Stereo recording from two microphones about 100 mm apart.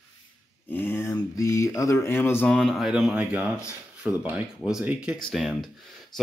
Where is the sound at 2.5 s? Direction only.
5° left (ahead or behind); by 5.1 s 10° right (ahead or behind).